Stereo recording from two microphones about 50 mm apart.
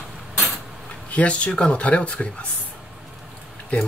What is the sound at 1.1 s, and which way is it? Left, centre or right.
Speech, left.